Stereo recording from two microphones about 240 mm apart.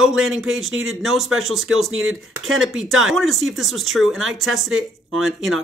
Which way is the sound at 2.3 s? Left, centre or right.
Centre.